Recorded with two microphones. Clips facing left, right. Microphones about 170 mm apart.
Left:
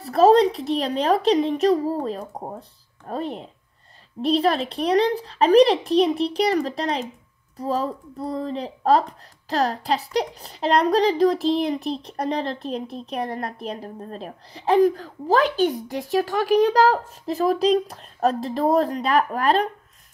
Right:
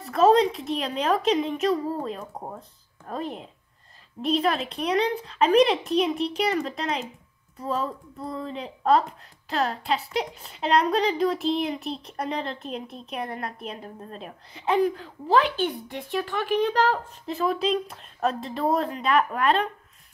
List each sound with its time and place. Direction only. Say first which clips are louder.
0.0 s speech: left 4 dB; 35° left (ahead or behind)